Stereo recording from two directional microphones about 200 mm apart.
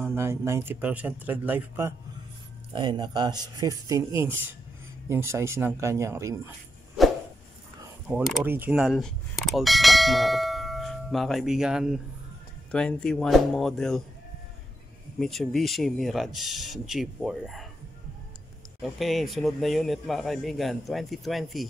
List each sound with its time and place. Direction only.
0.0 s speech: 10° right (ahead or behind)
2.7 s speech: 25° right (ahead or behind)
8.1 s a man's voice: 15° right (ahead or behind); by 14.0 s centre (ahead or behind)
15.1 s a man's voice: centre (ahead or behind)
18.8 s a man's voice: centre (ahead or behind)